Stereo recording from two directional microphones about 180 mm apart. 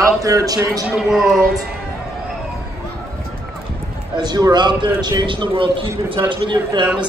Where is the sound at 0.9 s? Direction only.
5° right (ahead or behind).